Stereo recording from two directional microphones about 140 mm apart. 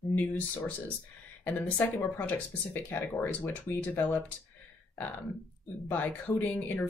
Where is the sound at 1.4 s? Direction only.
10° left (ahead or behind).